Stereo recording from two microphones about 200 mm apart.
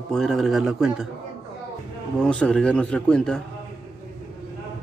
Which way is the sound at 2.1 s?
5° left (ahead or behind).